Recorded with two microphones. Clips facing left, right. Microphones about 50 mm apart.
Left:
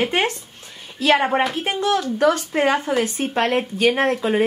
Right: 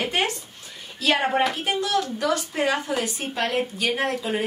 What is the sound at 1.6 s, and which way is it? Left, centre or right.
Speech, left.